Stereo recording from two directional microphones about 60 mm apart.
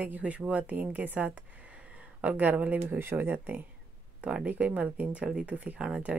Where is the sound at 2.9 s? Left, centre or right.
Right.